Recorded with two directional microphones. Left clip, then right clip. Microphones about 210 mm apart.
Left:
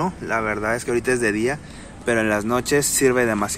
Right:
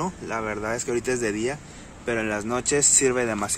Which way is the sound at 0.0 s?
5° right (ahead or behind).